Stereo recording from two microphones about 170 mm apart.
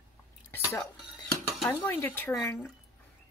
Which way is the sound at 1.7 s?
10° left (ahead or behind).